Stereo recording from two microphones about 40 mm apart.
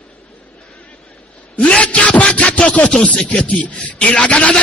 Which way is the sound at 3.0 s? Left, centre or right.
Left.